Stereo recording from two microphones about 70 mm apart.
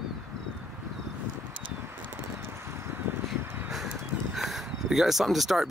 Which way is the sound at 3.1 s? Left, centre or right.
Right.